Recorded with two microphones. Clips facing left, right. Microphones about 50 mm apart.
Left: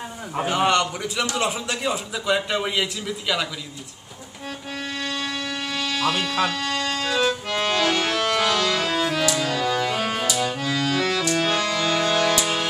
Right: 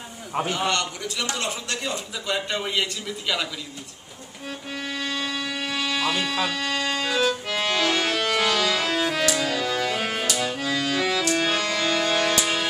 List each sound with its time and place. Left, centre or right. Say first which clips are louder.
0.5 s a man's voice: left 7 dB; centre
4.8 s a sound: even; centre
10.2 s accordion: left 2 dB; centre